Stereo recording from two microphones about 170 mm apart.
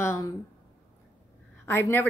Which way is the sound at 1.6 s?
10° left (ahead or behind).